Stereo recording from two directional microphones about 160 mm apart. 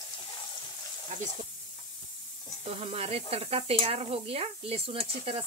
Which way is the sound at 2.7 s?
35° right (ahead or behind).